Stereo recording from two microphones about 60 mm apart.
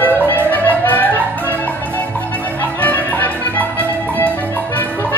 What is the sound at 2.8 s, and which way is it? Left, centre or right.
Music, left.